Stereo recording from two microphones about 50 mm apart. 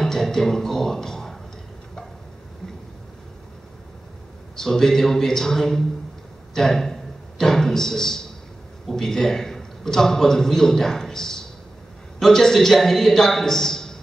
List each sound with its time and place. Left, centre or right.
0.0 s speech: centre
4.6 s a man's voice: centre
6.5 s a sound: centre
8.8 s a man's voice: centre